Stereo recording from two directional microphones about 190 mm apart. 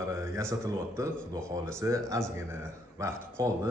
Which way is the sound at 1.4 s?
15° right (ahead or behind).